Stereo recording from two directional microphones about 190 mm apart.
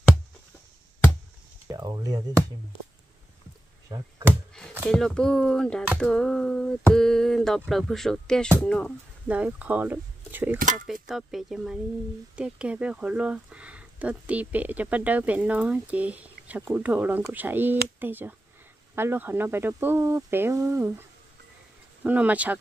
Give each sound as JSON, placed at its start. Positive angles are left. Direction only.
{"t": 1.7, "sound": "speech", "side_deg": -20}
{"t": 2.7, "sound": "speech", "side_deg": 30}
{"t": 3.9, "sound": "speech", "side_deg": -20}
{"t": 4.8, "sound": "speech", "side_deg": 5}
{"t": 9.3, "sound": "speech", "side_deg": -5}
{"t": 22.0, "sound": "speech", "side_deg": -10}